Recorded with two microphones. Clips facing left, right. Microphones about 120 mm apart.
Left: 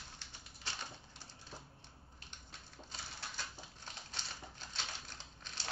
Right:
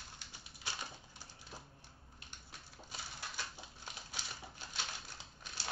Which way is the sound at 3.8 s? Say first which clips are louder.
Right 1 dB; 10° right (ahead or behind).